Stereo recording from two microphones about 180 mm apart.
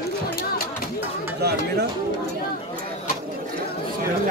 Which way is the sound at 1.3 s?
65° right (ahead or behind).